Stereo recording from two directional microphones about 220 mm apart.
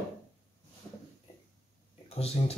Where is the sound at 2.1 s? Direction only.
25° left (ahead or behind).